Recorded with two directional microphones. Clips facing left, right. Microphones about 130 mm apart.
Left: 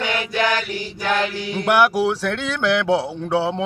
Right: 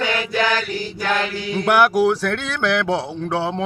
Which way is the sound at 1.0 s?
10° left (ahead or behind).